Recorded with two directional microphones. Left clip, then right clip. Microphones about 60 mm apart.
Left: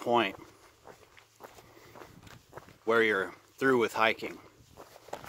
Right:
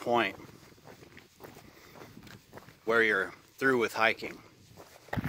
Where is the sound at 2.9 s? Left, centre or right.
Left.